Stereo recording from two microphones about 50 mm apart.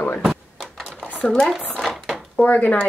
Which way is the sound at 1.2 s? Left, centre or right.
Centre.